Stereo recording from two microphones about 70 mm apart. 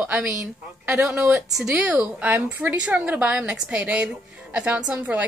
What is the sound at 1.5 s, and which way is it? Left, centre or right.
A woman's voice, centre.